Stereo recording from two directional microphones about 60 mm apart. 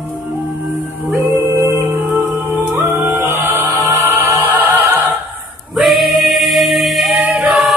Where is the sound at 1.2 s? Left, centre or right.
Right.